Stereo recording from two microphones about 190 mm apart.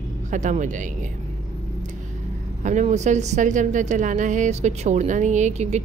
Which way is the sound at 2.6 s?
40° right (ahead or behind).